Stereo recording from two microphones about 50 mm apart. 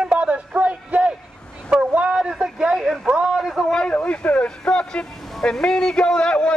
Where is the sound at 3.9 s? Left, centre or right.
Left.